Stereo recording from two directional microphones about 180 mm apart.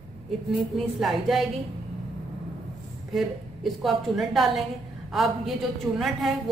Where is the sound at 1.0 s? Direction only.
Centre (ahead or behind).